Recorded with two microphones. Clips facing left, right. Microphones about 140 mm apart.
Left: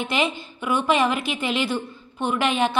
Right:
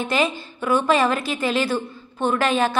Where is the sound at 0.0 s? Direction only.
20° left (ahead or behind).